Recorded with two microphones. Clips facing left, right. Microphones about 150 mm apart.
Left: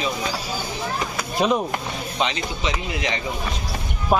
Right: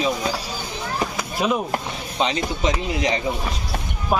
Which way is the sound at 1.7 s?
35° right (ahead or behind).